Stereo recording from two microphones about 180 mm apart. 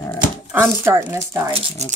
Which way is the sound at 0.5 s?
15° right (ahead or behind).